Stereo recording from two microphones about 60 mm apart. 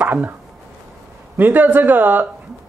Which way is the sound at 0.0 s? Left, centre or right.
Right.